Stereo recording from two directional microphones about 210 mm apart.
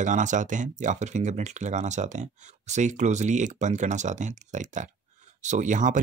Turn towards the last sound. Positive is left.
turn(degrees=-35)  # may be behind; listen again after turning